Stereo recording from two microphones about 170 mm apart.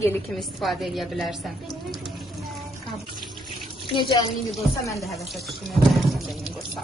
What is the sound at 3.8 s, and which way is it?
Speech, 30° left (ahead or behind).